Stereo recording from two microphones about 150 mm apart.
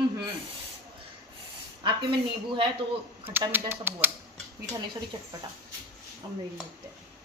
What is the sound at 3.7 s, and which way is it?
Speech, 15° right (ahead or behind).